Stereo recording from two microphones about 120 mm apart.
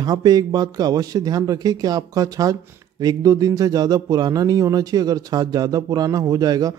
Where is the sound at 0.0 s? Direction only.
35° right (ahead or behind).